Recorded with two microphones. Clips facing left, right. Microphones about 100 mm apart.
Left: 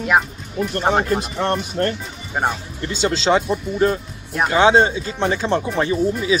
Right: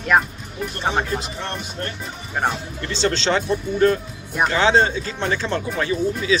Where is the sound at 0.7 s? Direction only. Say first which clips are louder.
Left 5 dB; 50° left (ahead or behind).